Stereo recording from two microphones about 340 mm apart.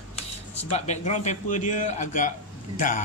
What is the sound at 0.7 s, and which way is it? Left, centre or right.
Speech, centre.